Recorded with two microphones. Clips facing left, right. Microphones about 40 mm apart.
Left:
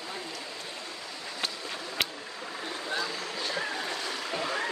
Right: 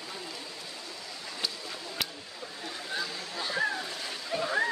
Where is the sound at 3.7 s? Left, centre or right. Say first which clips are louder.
Left 3 dB; left.